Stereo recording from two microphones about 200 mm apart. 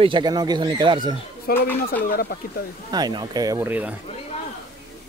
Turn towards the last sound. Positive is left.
turn(degrees=-10)  # may be behind; listen again after turning